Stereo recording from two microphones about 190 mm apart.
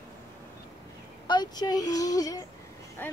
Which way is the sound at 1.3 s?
20° left (ahead or behind).